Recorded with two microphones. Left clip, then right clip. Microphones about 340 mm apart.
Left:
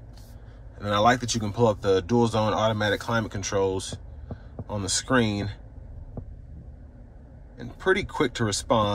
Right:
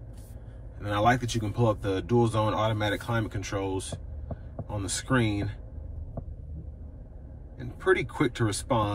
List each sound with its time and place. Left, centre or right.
0.7 s speech: centre
7.5 s speech: centre